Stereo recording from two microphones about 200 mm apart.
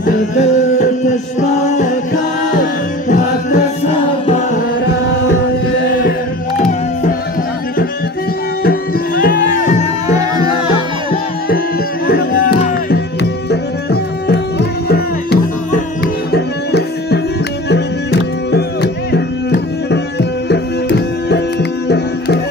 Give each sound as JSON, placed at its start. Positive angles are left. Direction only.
{"t": 0.0, "sound": "music", "side_deg": 35}
{"t": 6.6, "sound": "music", "side_deg": 40}
{"t": 8.6, "sound": "music", "side_deg": 45}
{"t": 10.0, "sound": "music", "side_deg": -20}
{"t": 12.1, "sound": "music", "side_deg": 50}
{"t": 12.9, "sound": "tabla", "side_deg": 55}
{"t": 17.6, "sound": "music", "side_deg": 55}
{"t": 21.8, "sound": "tabla", "side_deg": 55}